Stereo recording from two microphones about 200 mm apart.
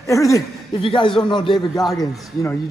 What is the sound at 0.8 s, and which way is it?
Speech, 25° left (ahead or behind).